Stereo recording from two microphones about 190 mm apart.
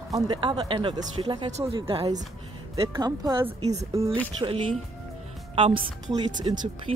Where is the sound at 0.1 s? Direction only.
25° right (ahead or behind).